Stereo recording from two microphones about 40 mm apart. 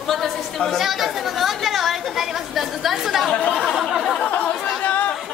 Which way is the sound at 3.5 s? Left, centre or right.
Centre.